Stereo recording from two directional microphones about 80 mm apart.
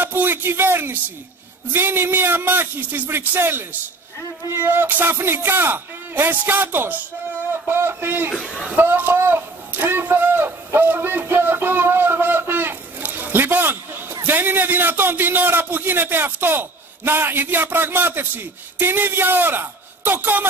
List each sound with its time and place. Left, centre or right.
0.0 s a man's voice: right
8.5 s a man's voice: centre
8.7 s a sound: right
14.2 s a man's voice: right